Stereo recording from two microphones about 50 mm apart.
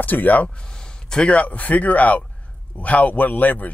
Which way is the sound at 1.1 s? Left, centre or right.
Left.